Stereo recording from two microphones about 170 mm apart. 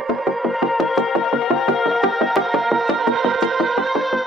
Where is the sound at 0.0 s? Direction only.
Centre (ahead or behind).